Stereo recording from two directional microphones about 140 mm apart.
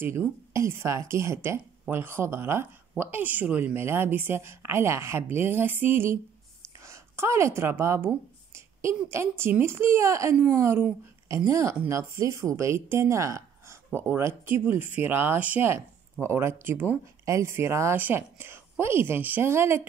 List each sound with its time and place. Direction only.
0.0 s speech: 15° right (ahead or behind)
6.8 s a sound: 20° right (ahead or behind)
9.1 s a woman's voice: 20° right (ahead or behind)